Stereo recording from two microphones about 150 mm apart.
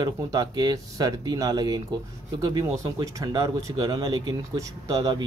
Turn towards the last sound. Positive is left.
turn(degrees=-25)  # may be behind; listen again after turning